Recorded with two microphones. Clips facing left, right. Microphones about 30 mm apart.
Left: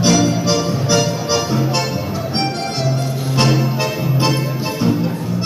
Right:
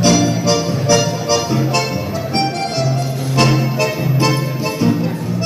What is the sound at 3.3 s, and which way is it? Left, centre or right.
Music, centre.